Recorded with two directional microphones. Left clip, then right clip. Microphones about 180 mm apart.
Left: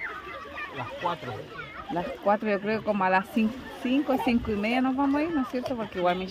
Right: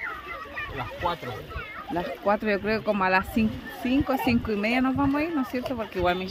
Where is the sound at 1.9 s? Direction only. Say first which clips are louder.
Even; 5° right (ahead or behind).